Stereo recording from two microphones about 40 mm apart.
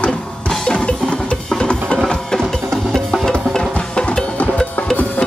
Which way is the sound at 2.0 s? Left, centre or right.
Centre.